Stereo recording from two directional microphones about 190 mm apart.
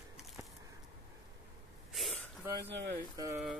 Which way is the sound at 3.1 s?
15° right (ahead or behind).